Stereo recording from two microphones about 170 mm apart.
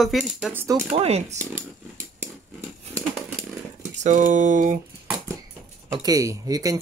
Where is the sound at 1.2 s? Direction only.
15° right (ahead or behind).